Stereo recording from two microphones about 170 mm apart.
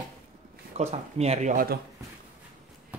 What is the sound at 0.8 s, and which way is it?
Speech, 40° right (ahead or behind).